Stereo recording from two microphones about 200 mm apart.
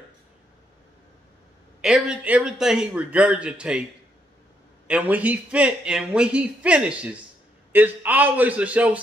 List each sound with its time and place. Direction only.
1.8 s a man's voice: 5° right (ahead or behind)
4.8 s a man's voice: 5° right (ahead or behind)